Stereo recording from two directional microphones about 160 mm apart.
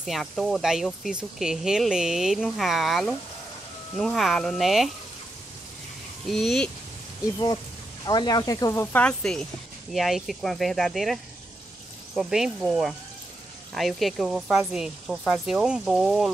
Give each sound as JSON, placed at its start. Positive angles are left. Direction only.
{"t": 0.0, "sound": "speech", "side_deg": 0}
{"t": 6.2, "sound": "speech", "side_deg": 0}
{"t": 8.0, "sound": "speech", "side_deg": 25}
{"t": 8.9, "sound": "speech", "side_deg": 5}
{"t": 12.2, "sound": "speech", "side_deg": -5}